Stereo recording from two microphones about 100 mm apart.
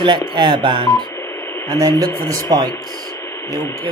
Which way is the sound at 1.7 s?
35° right (ahead or behind).